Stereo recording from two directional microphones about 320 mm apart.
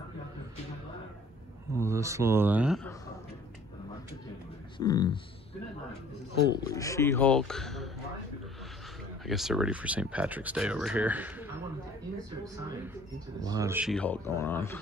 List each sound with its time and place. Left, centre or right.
1.8 s speech: centre
4.7 s speech: centre
6.6 s speech: centre
9.2 s speech: centre
13.4 s speech: centre